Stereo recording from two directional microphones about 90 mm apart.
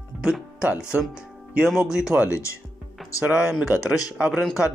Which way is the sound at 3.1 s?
35° left (ahead or behind).